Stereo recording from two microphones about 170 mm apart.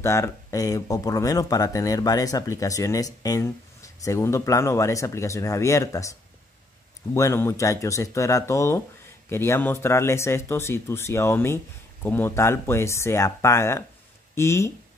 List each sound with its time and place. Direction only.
0.0 s speech: 15° left (ahead or behind)
7.2 s speech: 15° left (ahead or behind)